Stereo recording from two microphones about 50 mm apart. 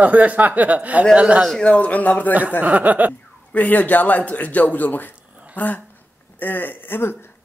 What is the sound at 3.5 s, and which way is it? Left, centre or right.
Speech, left.